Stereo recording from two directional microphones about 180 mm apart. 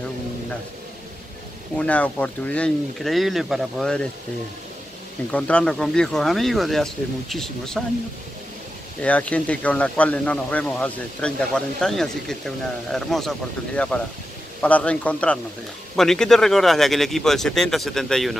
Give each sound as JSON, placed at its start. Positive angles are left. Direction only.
{"t": 1.8, "sound": "speech", "side_deg": 10}
{"t": 5.3, "sound": "speech", "side_deg": 5}
{"t": 9.0, "sound": "speech", "side_deg": 10}